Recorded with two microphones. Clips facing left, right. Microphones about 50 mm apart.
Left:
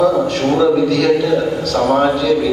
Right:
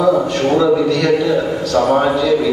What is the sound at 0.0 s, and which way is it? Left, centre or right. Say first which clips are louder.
A man's voice: even; centre.